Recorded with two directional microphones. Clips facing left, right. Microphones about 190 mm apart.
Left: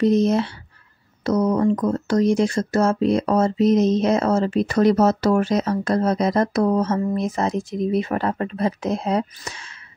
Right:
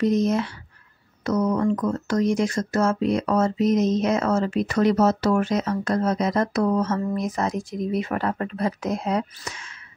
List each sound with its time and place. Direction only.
0.0 s speech: 30° left (ahead or behind)